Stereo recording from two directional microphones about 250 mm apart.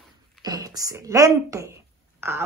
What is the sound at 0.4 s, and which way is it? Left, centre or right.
Speech, centre.